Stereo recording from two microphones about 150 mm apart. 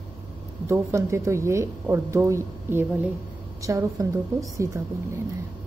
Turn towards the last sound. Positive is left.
turn(degrees=-20)  # may be behind; listen again after turning